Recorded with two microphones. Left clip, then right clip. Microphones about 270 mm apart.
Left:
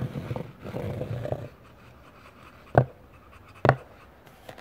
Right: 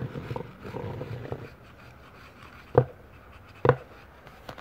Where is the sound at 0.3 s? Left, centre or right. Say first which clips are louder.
Left 1 dB; left.